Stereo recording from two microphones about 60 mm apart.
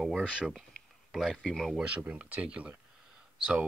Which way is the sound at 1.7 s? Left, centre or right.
Right.